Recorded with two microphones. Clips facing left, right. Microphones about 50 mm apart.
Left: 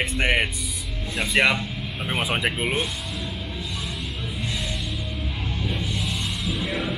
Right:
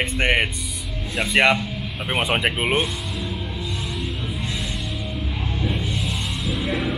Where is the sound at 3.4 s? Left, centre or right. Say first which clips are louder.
Right 3 dB; right.